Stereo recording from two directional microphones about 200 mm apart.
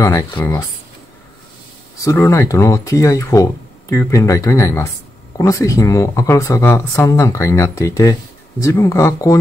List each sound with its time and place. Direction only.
0.0 s speech: 15° left (ahead or behind)
2.0 s speech: 15° left (ahead or behind)